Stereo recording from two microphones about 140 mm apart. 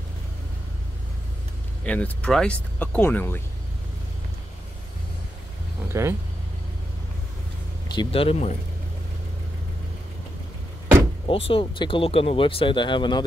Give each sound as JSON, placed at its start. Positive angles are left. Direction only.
{"t": 1.9, "sound": "speech", "side_deg": 10}
{"t": 5.9, "sound": "a sound", "side_deg": -20}
{"t": 7.9, "sound": "speech", "side_deg": 35}
{"t": 11.2, "sound": "speech", "side_deg": 40}